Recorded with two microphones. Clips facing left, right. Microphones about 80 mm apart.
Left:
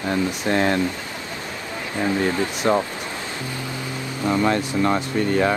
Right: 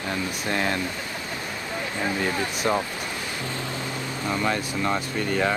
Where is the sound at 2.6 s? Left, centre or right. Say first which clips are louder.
Left 5 dB; left.